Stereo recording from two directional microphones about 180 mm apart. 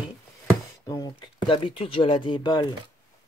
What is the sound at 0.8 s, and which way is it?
Speech, 20° left (ahead or behind).